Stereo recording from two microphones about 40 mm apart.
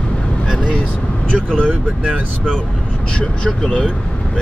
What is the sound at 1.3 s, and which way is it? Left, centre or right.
Speech, left.